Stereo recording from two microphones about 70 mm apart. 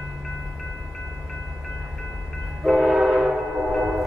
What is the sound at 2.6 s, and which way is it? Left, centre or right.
Train, centre.